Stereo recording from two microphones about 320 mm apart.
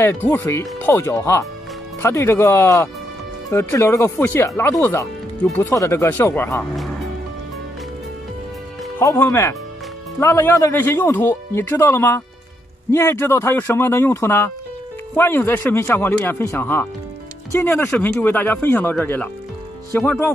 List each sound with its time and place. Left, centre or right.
0.0 s speech: centre
8.9 s speech: centre